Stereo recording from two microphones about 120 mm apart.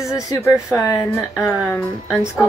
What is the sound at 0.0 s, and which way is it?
Speech, 25° left (ahead or behind).